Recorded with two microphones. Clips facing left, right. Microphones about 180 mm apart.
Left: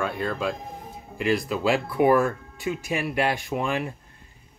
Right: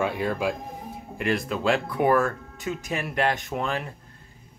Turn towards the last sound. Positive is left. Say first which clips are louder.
# left 2 dB
turn(degrees=10)  # may be behind; listen again after turning